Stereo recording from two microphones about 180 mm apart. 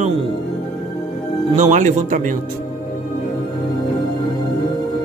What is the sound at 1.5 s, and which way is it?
Speech, 45° right (ahead or behind).